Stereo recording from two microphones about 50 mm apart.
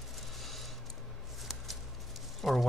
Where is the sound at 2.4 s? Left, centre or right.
Centre.